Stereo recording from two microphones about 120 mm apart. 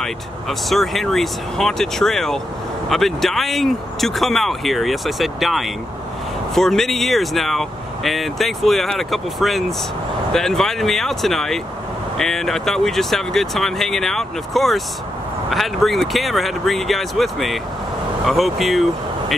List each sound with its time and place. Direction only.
0.0 s speech: centre (ahead or behind)